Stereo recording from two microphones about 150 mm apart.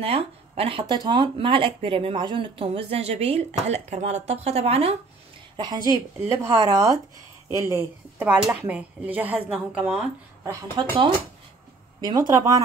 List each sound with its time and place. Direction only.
0.0 s speech: 40° right (ahead or behind)
5.6 s speech: 30° right (ahead or behind); by 9.9 s 10° right (ahead or behind)
10.8 s speech: 30° right (ahead or behind)
12.0 s speech: 25° right (ahead or behind)